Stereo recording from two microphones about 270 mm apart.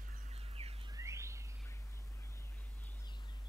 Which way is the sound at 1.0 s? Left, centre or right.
Centre.